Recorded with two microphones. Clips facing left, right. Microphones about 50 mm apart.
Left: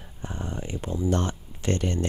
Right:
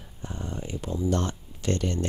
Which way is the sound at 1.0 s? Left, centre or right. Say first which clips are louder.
Left 1 dB; left.